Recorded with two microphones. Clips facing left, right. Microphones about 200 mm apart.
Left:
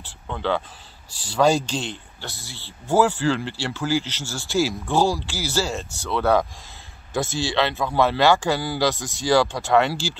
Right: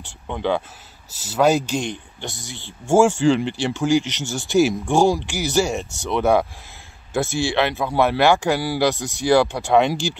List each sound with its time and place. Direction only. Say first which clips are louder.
0.0 s speech: right 3 dB; 15° right (ahead or behind)
7.5 s speech: even; 15° right (ahead or behind)